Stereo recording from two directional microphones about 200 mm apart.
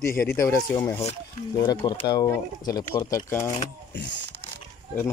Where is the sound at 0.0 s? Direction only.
10° left (ahead or behind).